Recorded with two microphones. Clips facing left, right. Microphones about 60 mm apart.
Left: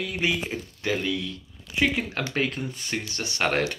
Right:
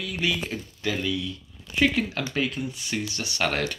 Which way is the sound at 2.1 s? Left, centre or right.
Left.